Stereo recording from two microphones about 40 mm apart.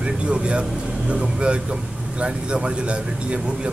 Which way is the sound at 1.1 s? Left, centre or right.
Right.